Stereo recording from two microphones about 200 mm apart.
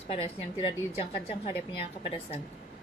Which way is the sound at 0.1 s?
25° left (ahead or behind).